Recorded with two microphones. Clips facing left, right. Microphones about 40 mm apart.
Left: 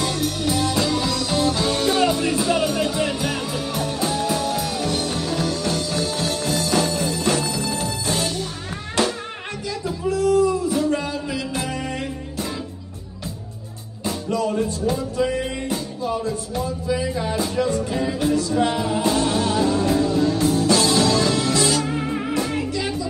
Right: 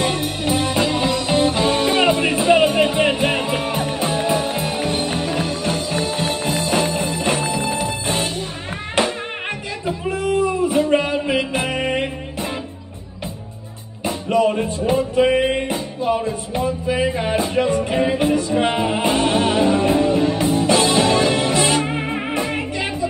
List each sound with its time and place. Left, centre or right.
0.0 s music: right
14.0 s music: right